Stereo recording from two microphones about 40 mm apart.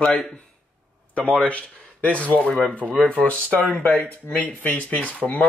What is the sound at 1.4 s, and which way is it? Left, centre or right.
Speech, left.